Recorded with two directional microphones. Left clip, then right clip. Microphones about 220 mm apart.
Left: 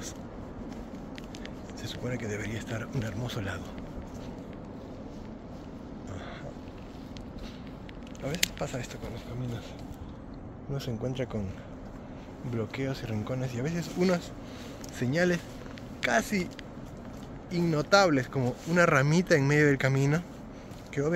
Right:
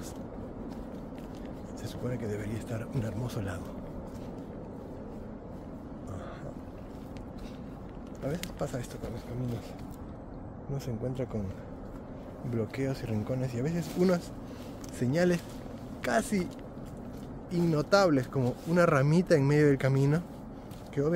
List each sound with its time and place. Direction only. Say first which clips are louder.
2.0 s speech: left 1 dB; 10° right (ahead or behind)
8.5 s speech: even; 15° right (ahead or behind)
10.7 s speech: left 2 dB; centre (ahead or behind)
12.5 s speech: even; 20° right (ahead or behind)
17.5 s speech: left 2 dB; 10° right (ahead or behind)